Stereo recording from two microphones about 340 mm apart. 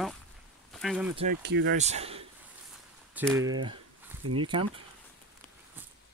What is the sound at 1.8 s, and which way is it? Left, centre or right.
Speech, centre.